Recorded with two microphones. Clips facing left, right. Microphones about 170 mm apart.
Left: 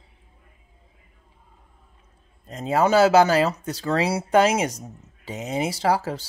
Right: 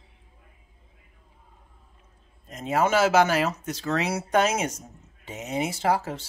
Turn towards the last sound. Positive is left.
turn(degrees=35)  # may be behind; listen again after turning